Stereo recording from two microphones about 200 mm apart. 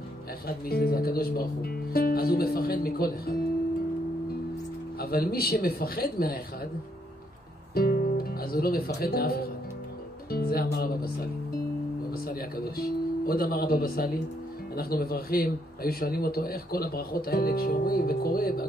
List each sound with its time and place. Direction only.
0.5 s a man's voice: 50° left (ahead or behind)
4.9 s a man's voice: 50° left (ahead or behind)
7.7 s a man's voice: 50° left (ahead or behind)